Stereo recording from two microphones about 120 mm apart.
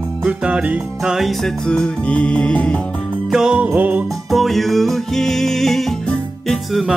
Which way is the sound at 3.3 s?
10° right (ahead or behind).